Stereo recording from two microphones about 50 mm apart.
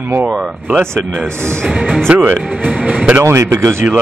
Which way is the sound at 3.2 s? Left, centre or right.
Right.